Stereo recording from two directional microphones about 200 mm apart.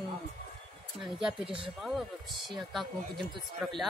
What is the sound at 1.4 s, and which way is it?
Speech, 25° right (ahead or behind).